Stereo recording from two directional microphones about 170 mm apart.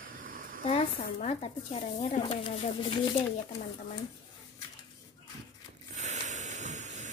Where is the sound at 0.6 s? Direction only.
35° left (ahead or behind).